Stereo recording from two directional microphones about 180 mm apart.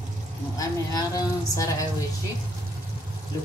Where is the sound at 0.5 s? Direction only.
20° left (ahead or behind).